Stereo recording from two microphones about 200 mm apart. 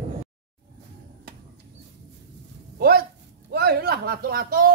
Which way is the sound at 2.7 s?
50° right (ahead or behind).